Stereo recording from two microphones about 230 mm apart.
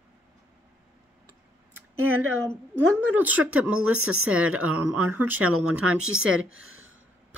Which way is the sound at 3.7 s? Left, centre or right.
Right.